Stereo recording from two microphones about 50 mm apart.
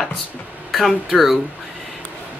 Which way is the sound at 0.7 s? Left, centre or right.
Centre.